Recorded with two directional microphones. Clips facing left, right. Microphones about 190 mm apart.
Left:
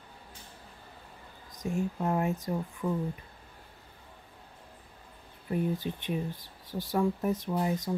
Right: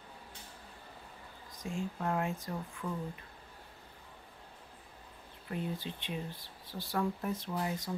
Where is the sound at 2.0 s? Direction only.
20° left (ahead or behind).